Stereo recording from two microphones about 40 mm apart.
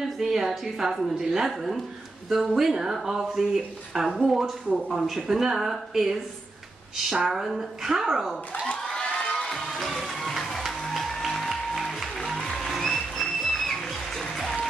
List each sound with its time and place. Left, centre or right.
0.0 s speech: centre
8.9 s a sound: centre
9.5 s music: centre